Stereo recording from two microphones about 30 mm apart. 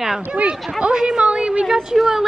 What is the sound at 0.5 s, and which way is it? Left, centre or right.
Speech, centre.